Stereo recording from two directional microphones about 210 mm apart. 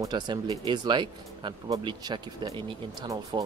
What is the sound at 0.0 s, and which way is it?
Speech, 20° right (ahead or behind).